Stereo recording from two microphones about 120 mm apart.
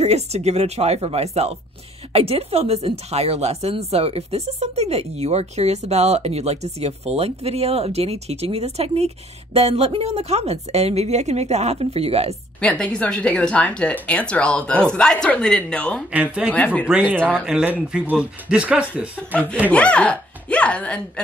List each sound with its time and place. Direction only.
0.0 s a woman's voice: 65° right (ahead or behind)
12.5 s speech: 10° left (ahead or behind)
16.1 s speech: 10° right (ahead or behind)
16.4 s speech: 10° left (ahead or behind)
17.3 s speech: 10° right (ahead or behind)
19.7 s speech: 10° left (ahead or behind)